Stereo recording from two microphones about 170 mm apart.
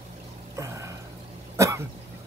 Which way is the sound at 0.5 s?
20° right (ahead or behind).